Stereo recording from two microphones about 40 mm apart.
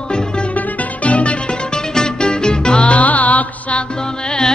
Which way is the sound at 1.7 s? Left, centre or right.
Centre.